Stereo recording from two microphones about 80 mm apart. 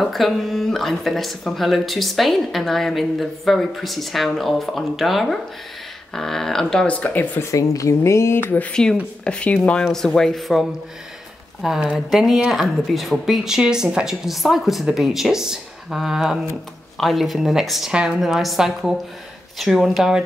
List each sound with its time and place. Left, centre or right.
0.0 s speech: centre
7.0 s speech: left
7.5 s speech: left
9.2 s speech: centre